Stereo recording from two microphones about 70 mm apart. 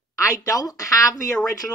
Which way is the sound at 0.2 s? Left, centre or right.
Left.